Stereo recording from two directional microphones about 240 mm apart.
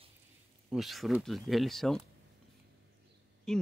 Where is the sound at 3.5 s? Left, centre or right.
Centre.